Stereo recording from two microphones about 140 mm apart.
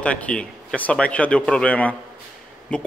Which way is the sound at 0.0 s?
10° left (ahead or behind).